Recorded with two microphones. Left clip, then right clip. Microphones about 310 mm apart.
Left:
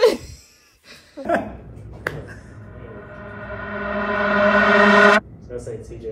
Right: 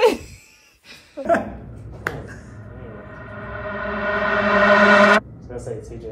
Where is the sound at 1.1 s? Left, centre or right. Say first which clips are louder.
Right 2 dB; centre.